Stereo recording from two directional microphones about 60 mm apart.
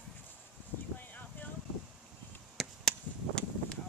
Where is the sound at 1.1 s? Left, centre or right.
Left.